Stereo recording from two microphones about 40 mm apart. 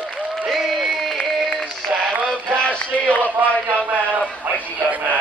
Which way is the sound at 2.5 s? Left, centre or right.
Left.